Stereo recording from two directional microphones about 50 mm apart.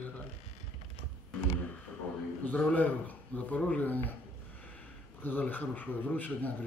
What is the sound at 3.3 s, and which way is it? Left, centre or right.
Speech, left.